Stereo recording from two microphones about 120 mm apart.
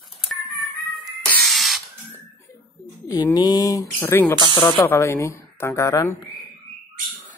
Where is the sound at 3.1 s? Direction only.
30° left (ahead or behind).